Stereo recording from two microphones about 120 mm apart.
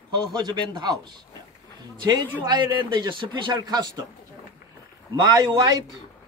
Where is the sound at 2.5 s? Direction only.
40° right (ahead or behind).